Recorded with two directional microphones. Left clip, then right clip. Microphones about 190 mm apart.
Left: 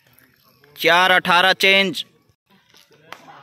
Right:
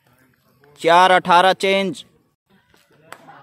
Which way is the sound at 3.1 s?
45° right (ahead or behind).